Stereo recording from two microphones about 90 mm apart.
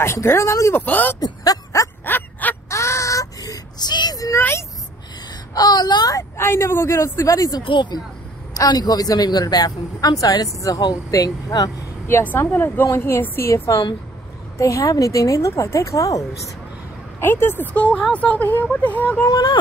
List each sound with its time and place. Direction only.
0.0 s a woman's voice: 30° left (ahead or behind)
0.8 s a woman's voice: 20° left (ahead or behind)
1.2 s speech: 45° left (ahead or behind)
2.0 s a sound: 20° left (ahead or behind)
2.7 s child singing: 35° left (ahead or behind)
4.4 s a sound: 25° left (ahead or behind)
5.5 s a woman's voice: 45° left (ahead or behind)
6.3 s a woman's voice: 30° left (ahead or behind)
7.6 s a woman's voice: 60° left (ahead or behind)
8.5 s speech: 45° left (ahead or behind)
12.1 s a woman's voice: 25° left (ahead or behind)
17.2 s a woman's voice: 25° left (ahead or behind)
19.2 s a woman's voice: 55° left (ahead or behind)